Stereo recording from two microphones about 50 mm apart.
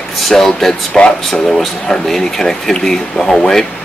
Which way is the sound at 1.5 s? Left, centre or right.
Centre.